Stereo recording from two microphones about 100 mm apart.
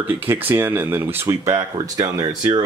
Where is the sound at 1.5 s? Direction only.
40° right (ahead or behind).